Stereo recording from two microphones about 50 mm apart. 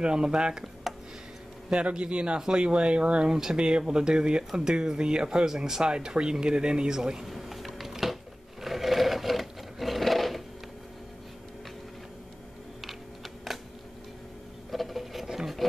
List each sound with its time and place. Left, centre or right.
0.0 s speech: centre
1.7 s speech: right
7.2 s sewing machine: centre
13.5 s a sound: centre
14.7 s sewing machine: centre